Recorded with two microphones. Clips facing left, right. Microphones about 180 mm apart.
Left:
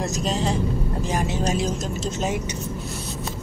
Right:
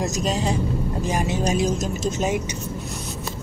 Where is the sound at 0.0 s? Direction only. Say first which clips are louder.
Right 1 dB; 15° right (ahead or behind).